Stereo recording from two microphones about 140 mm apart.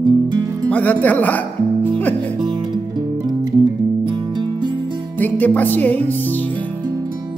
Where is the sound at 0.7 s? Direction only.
10° left (ahead or behind).